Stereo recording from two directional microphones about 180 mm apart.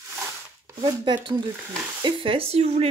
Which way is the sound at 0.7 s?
25° right (ahead or behind).